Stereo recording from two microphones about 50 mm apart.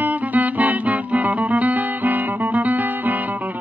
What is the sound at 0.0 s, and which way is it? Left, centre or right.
Music, right.